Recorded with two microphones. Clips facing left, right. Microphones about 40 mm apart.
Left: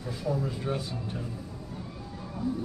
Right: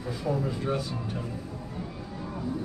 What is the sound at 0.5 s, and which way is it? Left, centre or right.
Speech, centre.